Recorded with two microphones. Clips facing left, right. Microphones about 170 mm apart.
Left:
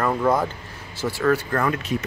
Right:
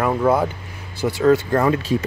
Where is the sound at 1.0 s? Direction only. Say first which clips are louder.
Right 5 dB; 20° right (ahead or behind).